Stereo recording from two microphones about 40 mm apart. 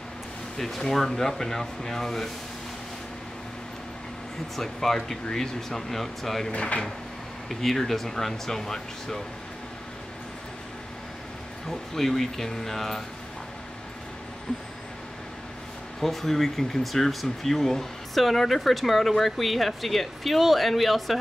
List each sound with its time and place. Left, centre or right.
0.6 s speech: centre
4.6 s speech: centre
6.5 s speech: left
7.4 s speech: centre
11.6 s speech: centre
16.0 s speech: centre